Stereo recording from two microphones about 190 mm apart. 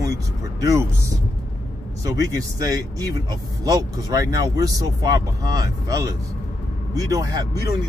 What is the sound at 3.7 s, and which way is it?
Speech, 20° right (ahead or behind).